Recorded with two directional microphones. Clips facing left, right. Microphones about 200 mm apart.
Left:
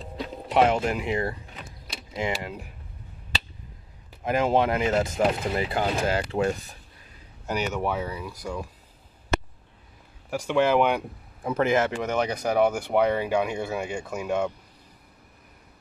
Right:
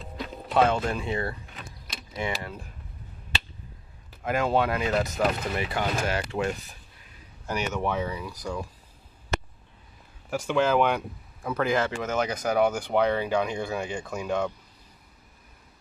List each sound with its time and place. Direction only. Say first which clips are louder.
0.0 s music: left 2 dB; 25° left (ahead or behind)
2.1 s speech: left 3 dB; 20° left (ahead or behind)
4.2 s speech: left 2 dB; 20° left (ahead or behind)
7.4 s speech: left 1 dB; 15° left (ahead or behind)
10.3 s speech: left 2 dB; 15° left (ahead or behind)
12.5 s speech: left 2 dB; 5° left (ahead or behind)